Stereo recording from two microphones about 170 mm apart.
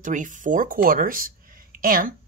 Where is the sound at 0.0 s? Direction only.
50° right (ahead or behind).